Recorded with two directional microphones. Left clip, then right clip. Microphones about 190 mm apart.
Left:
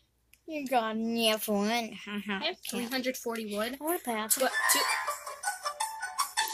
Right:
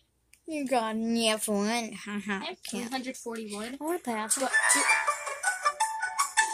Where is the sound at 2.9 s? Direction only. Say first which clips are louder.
Left 5 dB; 40° left (ahead or behind).